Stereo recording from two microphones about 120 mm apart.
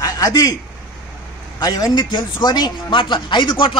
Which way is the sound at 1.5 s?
35° left (ahead or behind).